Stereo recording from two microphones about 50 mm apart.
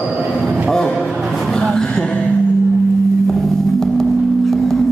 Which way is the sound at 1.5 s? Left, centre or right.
Centre.